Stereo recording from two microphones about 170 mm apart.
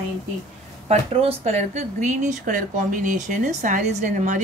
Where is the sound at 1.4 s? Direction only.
40° right (ahead or behind).